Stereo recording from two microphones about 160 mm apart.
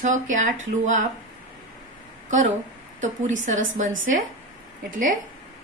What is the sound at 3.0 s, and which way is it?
A woman's voice, 50° right (ahead or behind).